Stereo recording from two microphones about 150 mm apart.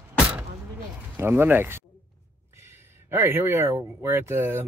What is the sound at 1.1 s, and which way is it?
Speech, 15° right (ahead or behind).